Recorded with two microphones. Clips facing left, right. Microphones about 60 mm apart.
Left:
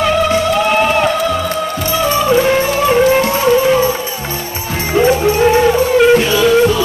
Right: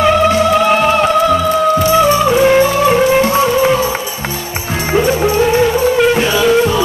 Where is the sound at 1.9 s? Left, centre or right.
Centre.